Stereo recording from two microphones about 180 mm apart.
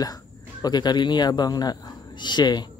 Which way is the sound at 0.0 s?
20° left (ahead or behind).